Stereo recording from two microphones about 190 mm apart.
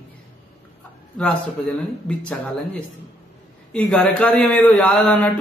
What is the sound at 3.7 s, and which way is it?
A man's voice, 5° left (ahead or behind).